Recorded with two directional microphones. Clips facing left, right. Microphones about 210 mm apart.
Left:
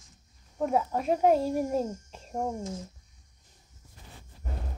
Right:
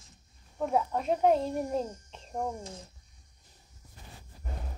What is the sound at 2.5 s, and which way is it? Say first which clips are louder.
Speech: left 6 dB; 35° right (ahead or behind).